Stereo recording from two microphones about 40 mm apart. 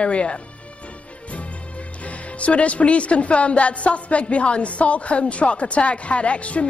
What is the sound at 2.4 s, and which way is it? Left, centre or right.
A woman's voice, left.